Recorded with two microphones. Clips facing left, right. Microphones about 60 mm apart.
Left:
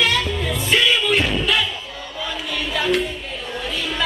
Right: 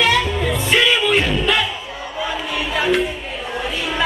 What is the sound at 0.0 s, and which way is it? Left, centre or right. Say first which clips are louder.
Music: right 4 dB; centre.